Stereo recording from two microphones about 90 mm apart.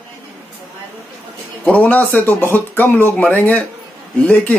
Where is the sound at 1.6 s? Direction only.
15° left (ahead or behind).